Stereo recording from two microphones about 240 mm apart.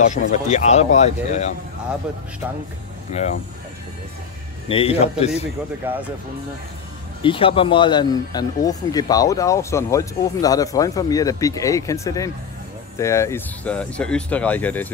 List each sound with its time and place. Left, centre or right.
0.1 s speech: left
2.4 s speech: centre
3.1 s speech: left
4.6 s speech: left
5.9 s speech: centre
7.2 s speech: left